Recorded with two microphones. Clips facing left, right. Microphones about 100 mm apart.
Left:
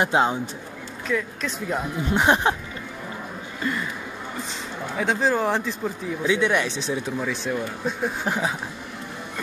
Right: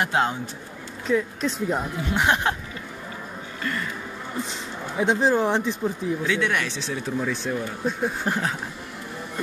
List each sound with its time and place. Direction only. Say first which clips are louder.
0.0 s speech: left 2 dB; 20° left (ahead or behind)
1.0 s speech: right 3 dB; 30° right (ahead or behind)
2.0 s speech: left 5 dB; 25° left (ahead or behind)
3.6 s speech: left 2 dB; 15° left (ahead or behind)
4.9 s speech: right 2 dB; 20° right (ahead or behind)
6.2 s speech: left 6 dB; 20° left (ahead or behind)
7.2 s speech: even; centre (ahead or behind)